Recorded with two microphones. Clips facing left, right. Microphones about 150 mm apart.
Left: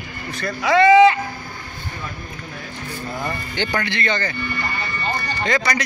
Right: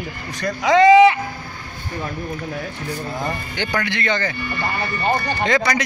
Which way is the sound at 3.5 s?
5° right (ahead or behind).